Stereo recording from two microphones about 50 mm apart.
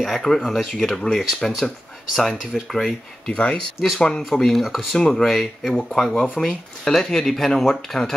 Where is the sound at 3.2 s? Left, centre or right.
Centre.